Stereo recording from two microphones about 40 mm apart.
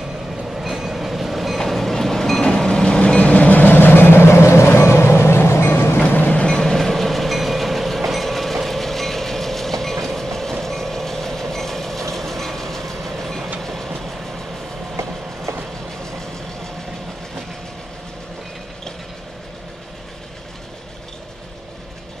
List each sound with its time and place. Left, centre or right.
0.5 s train: centre
2.4 s train: centre; by 3.6 s left
3.6 s vehicle: left
5.9 s train: left
6.4 s train: centre